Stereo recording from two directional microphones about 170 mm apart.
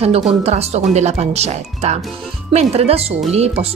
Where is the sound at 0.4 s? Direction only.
40° right (ahead or behind).